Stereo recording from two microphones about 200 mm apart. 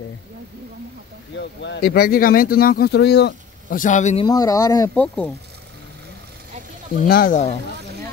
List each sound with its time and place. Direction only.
1.4 s speech: 60° left (ahead or behind)
3.8 s speech: 35° left (ahead or behind)
4.3 s speech: 20° left (ahead or behind)
7.0 s speech: 45° left (ahead or behind)